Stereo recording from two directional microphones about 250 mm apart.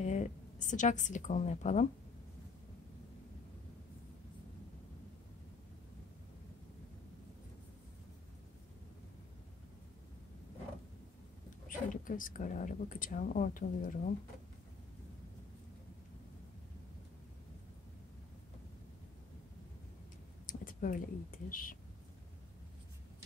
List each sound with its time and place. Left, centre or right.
0.0 s a woman's voice: left
11.6 s a woman's voice: left
20.4 s speech: left